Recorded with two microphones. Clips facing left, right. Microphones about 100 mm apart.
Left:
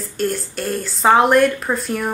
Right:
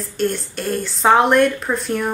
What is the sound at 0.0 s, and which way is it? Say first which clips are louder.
Speech: right 1 dB; centre (ahead or behind).